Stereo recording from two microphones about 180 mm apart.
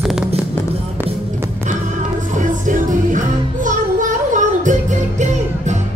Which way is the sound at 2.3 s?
45° right (ahead or behind).